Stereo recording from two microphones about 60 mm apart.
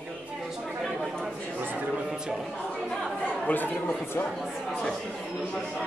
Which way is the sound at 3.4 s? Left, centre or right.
Left.